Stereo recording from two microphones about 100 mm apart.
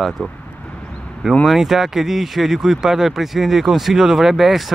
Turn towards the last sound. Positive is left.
turn(degrees=0)  # may be behind; listen again after turning